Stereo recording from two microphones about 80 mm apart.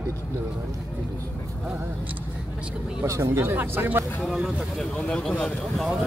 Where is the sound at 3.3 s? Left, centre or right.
Right.